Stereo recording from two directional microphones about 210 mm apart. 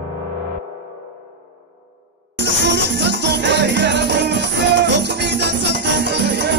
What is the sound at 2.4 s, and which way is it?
Music, 60° right (ahead or behind).